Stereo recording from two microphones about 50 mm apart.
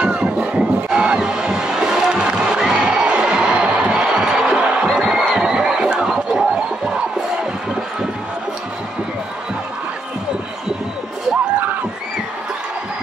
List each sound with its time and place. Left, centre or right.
0.0 s crowd: centre